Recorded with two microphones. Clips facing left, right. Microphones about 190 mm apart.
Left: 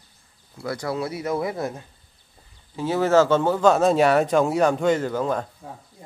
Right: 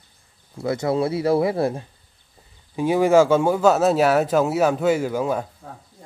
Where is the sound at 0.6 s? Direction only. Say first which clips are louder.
Right 6 dB; 25° right (ahead or behind).